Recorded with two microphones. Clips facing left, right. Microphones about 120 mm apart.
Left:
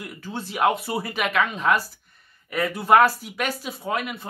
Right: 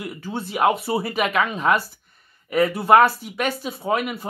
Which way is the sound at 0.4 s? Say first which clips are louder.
Right 2 dB; 5° right (ahead or behind).